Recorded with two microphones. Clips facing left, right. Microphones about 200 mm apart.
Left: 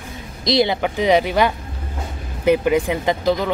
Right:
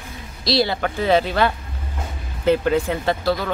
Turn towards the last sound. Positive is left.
turn(degrees=15)  # may be behind; listen again after turning